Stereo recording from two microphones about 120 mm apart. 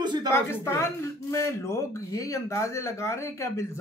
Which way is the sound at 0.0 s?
35° right (ahead or behind).